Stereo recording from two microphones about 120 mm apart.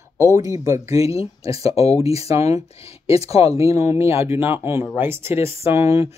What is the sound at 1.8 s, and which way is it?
Speech, 60° left (ahead or behind).